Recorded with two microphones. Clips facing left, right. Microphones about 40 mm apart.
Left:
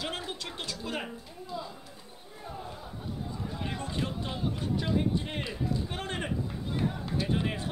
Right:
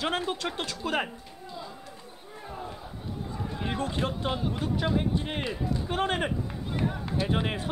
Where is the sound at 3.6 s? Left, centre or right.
Right.